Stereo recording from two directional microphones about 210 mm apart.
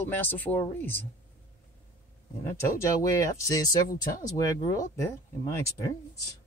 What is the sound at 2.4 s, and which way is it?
Speech, 15° left (ahead or behind).